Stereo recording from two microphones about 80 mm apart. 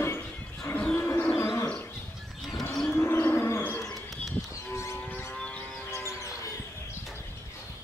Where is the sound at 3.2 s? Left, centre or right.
Left.